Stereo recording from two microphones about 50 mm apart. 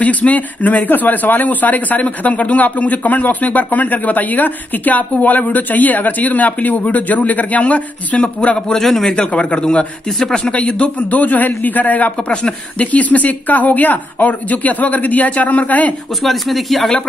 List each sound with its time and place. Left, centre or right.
0.0 s a man's voice: left
8.7 s a man's voice: centre
9.1 s a man's voice: left
16.2 s speech: centre